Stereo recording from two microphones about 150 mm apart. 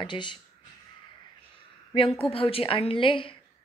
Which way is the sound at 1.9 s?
35° left (ahead or behind).